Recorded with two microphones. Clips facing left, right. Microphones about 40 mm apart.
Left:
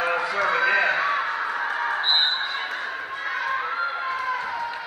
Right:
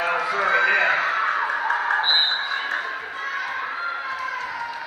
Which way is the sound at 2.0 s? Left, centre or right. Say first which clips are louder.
Right 2 dB; centre.